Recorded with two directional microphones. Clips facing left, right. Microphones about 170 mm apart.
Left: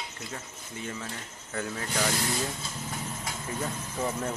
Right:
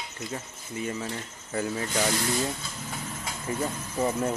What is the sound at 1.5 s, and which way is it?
Speech, 10° right (ahead or behind).